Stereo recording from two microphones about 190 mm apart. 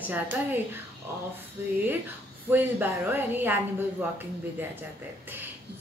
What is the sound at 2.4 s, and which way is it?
Speech, 10° right (ahead or behind).